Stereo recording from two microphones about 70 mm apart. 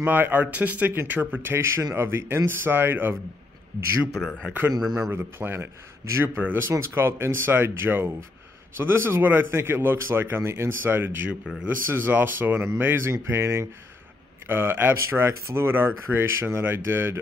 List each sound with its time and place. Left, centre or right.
0.0 s a man's voice: right
4.1 s speech: centre
5.1 s a man's voice: right